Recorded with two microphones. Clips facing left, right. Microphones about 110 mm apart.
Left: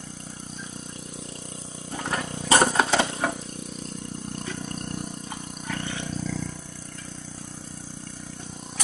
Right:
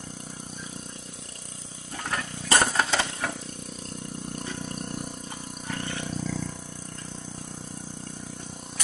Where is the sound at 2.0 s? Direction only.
20° left (ahead or behind).